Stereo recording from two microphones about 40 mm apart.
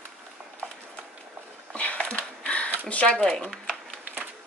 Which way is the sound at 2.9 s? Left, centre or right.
Left.